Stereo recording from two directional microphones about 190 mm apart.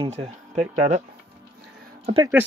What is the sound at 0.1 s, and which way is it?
Speech, 35° right (ahead or behind).